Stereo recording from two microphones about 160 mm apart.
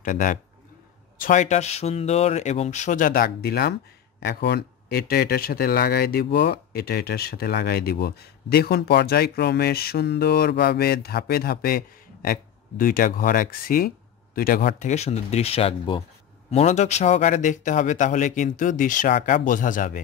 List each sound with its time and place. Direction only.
0.0 s speech: 55° left (ahead or behind)